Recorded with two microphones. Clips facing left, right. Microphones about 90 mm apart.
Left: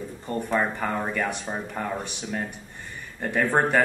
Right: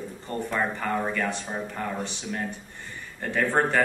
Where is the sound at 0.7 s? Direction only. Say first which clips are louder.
Even; 15° left (ahead or behind).